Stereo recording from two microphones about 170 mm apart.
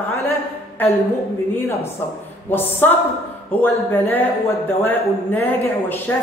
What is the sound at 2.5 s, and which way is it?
A man's voice, 10° left (ahead or behind).